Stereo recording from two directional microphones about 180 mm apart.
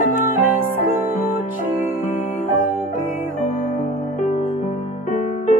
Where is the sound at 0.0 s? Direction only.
50° left (ahead or behind).